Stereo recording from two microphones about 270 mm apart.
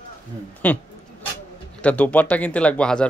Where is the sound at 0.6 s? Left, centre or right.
Centre.